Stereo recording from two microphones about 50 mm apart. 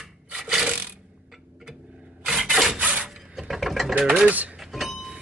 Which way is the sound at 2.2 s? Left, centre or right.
Centre.